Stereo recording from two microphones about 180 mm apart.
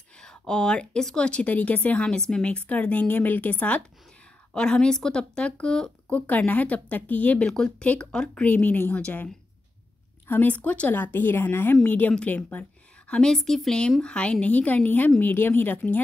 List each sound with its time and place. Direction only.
0.2 s speech: 5° left (ahead or behind)